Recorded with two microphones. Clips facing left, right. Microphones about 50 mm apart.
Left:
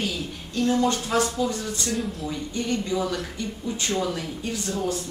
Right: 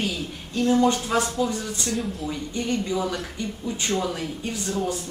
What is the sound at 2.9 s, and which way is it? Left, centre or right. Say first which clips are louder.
A woman's voice: even; centre.